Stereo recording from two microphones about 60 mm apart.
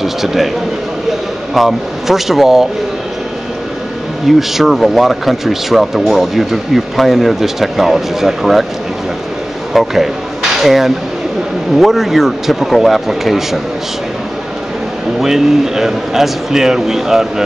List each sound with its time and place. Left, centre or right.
0.0 s speech: centre
1.5 s speech: centre
4.4 s speech: centre
9.7 s speech: centre
15.1 s speech: centre